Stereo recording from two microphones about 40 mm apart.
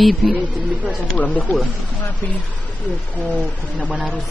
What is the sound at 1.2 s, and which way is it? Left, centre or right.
Speech, left.